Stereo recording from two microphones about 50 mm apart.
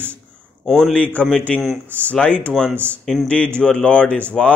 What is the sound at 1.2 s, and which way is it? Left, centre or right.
Speech, left.